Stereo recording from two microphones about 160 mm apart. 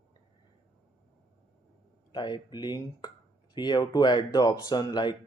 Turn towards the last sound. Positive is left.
turn(degrees=25)  # may be behind; listen again after turning